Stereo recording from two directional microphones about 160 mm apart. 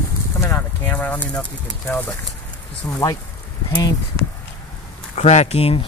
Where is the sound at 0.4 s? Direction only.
15° left (ahead or behind).